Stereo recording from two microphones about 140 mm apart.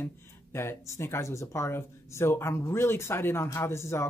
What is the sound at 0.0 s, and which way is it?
Speech, 20° left (ahead or behind).